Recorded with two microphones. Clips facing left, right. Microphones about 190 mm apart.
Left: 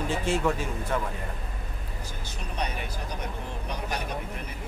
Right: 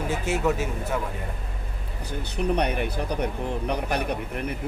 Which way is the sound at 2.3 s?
65° right (ahead or behind).